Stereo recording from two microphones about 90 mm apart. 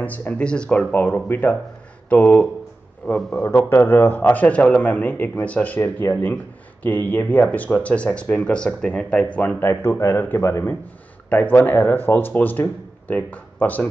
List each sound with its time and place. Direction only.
0.0 s a man's voice: 20° left (ahead or behind)
3.3 s a man's voice: 20° left (ahead or behind)